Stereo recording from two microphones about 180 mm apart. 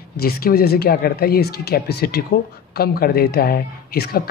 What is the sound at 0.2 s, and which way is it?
Speech, 55° left (ahead or behind).